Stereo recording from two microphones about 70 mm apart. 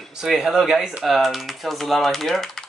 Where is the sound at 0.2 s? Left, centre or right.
Centre.